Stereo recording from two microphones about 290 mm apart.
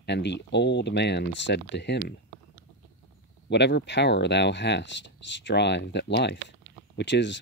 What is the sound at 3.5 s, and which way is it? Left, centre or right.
Speech, left.